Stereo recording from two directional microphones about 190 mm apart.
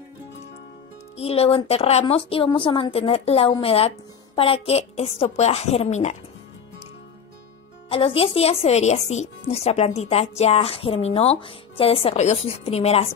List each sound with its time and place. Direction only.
1.1 s a woman's voice: 30° left (ahead or behind)
7.9 s a woman's voice: 30° left (ahead or behind)